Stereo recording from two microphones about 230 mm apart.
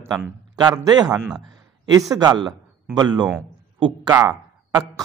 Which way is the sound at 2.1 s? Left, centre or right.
Centre.